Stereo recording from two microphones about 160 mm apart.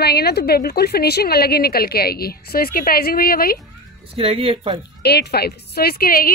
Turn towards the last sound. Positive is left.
turn(degrees=65)  # may be behind; listen again after turning